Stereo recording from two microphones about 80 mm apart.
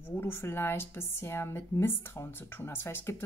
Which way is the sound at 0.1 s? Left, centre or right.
Left.